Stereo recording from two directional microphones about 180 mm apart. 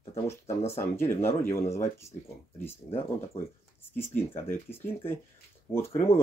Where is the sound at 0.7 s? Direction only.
15° left (ahead or behind).